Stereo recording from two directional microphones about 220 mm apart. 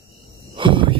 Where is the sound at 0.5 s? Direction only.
20° right (ahead or behind).